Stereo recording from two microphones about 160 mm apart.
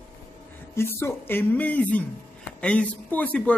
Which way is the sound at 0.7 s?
15° left (ahead or behind).